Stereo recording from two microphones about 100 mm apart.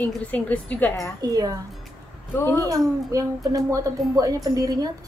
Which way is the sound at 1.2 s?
40° right (ahead or behind).